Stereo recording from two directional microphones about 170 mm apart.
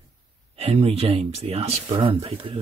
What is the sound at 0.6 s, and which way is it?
Speech, 35° right (ahead or behind).